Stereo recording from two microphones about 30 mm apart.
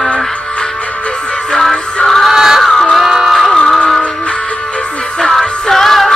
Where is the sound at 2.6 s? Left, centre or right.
Centre.